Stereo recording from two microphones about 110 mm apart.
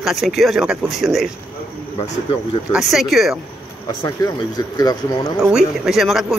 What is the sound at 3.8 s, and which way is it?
Speech, 35° left (ahead or behind).